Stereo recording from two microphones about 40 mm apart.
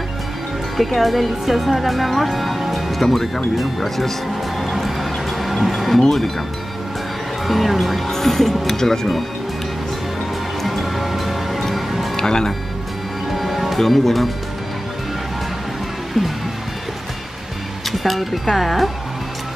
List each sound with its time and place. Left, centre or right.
0.7 s speech: centre
4.6 s music: centre
7.4 s speech: centre
10.6 s music: centre
12.2 s speech: centre
13.3 s music: centre
16.1 s speech: centre
17.9 s speech: centre